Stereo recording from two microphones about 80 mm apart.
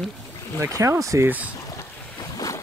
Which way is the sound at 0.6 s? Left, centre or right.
Right.